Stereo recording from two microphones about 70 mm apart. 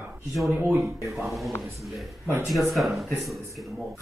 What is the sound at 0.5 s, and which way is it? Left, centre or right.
Speech, right.